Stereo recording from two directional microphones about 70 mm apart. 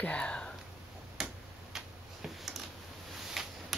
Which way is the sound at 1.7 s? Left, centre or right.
Centre.